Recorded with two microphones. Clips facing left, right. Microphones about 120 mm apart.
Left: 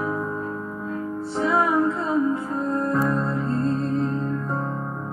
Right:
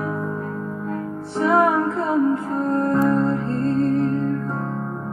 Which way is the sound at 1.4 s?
60° right (ahead or behind).